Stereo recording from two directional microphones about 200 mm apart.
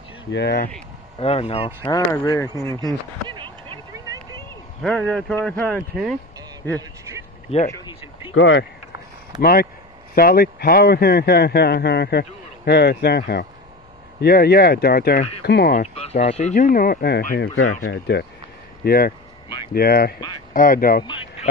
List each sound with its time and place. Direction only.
0.3 s speech: 60° left (ahead or behind)
1.2 s speech: 30° left (ahead or behind)
1.8 s speech: 15° left (ahead or behind)
2.8 s a sound: 25° right (ahead or behind)
4.8 s speech: 5° left (ahead or behind)
6.8 s speech: 15° right (ahead or behind)
8.3 s speech: 65° left (ahead or behind)
9.4 s speech: 50° left (ahead or behind)
15.8 s speech: 30° left (ahead or behind); by 17.4 s 50° left (ahead or behind)
17.4 s speech: 80° left
17.8 s speech: 60° left (ahead or behind)
18.9 s speech: 50° left (ahead or behind)